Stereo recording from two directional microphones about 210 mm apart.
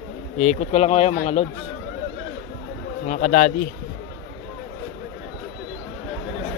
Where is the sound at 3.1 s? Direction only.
40° left (ahead or behind).